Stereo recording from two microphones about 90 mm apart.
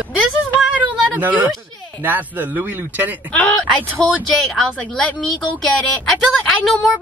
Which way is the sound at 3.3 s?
15° left (ahead or behind).